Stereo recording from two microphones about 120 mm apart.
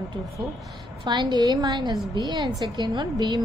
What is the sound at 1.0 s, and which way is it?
A woman's voice, 40° right (ahead or behind).